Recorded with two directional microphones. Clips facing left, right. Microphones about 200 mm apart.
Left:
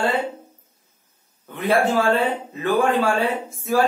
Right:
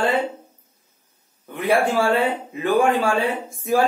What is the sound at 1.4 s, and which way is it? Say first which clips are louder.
A man's voice: even; 10° right (ahead or behind).